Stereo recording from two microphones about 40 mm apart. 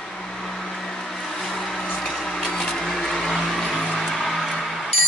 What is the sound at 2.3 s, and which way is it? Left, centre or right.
Music, centre.